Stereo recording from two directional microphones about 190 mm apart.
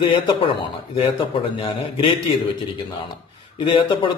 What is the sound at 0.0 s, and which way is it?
A man's voice, 25° left (ahead or behind).